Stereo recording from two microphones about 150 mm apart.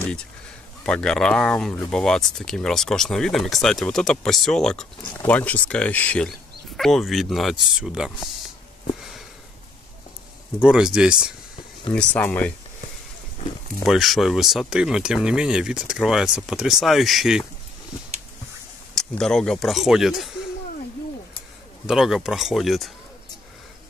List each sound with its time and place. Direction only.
0.8 s speech: 5° left (ahead or behind)
10.6 s speech: 5° right (ahead or behind)
11.9 s speech: 5° left (ahead or behind)
13.8 s speech: centre (ahead or behind)
18.9 s speech: 5° left (ahead or behind)
21.8 s speech: centre (ahead or behind)